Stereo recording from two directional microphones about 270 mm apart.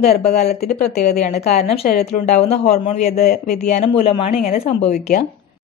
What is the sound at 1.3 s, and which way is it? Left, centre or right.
A woman's voice, left.